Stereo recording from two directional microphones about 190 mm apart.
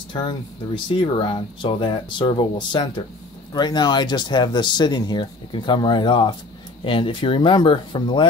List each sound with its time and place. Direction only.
0.1 s speech: 25° left (ahead or behind)